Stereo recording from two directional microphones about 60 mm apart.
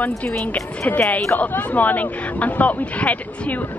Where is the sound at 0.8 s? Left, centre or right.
Left.